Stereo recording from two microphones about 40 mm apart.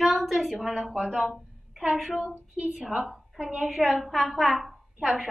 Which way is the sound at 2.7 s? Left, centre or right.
Centre.